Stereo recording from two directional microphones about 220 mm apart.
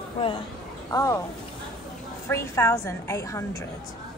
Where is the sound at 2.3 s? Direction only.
15° left (ahead or behind).